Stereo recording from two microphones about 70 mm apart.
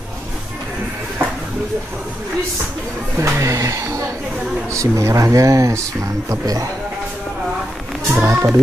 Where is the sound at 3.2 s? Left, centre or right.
Right.